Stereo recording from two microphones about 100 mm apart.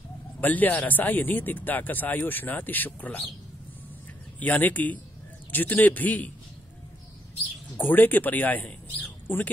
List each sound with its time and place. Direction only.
0.4 s speech: 15° left (ahead or behind)
4.4 s speech: 15° left (ahead or behind)
7.7 s speech: 20° left (ahead or behind)